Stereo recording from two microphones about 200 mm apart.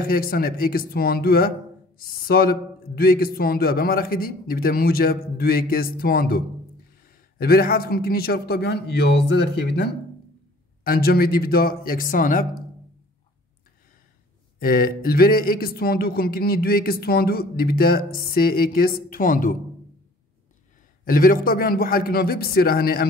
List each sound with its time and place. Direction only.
0.0 s speech: 45° left (ahead or behind)
14.6 s speech: 45° left (ahead or behind)
21.0 s speech: 45° left (ahead or behind)